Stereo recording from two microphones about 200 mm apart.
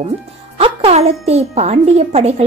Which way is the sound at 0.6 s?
30° right (ahead or behind).